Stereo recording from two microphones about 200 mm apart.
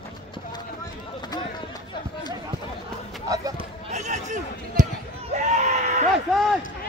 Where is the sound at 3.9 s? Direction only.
35° right (ahead or behind).